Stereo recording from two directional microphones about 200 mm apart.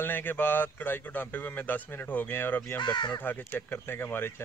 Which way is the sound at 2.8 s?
25° left (ahead or behind).